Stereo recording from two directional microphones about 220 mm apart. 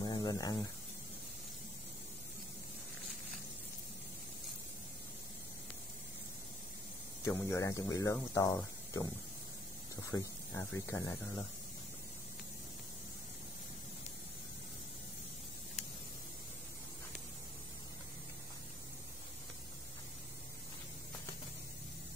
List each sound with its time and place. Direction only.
0.0 s a sound: 20° left (ahead or behind)
7.2 s speech: 15° left (ahead or behind)
10.1 s speech: 15° left (ahead or behind)